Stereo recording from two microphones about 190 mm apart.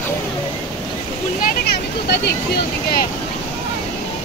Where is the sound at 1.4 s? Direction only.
60° left (ahead or behind).